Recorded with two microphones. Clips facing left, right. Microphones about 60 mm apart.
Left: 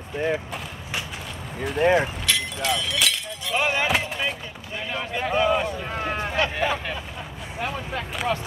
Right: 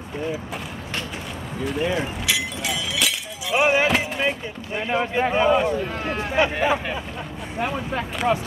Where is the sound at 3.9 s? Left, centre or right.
Centre.